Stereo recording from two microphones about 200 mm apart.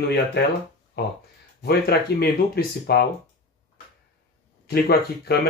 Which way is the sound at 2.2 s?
55° left (ahead or behind).